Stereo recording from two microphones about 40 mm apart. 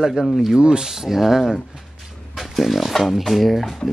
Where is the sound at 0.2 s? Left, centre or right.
Centre.